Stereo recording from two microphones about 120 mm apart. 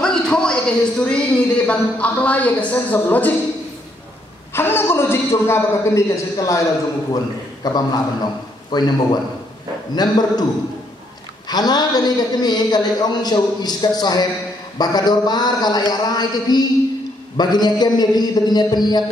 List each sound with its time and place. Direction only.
0.0 s speech: 5° left (ahead or behind)
4.6 s a man's voice: 20° left (ahead or behind)
7.6 s a man's voice: 35° left (ahead or behind)
11.4 s a man's voice: 35° left (ahead or behind)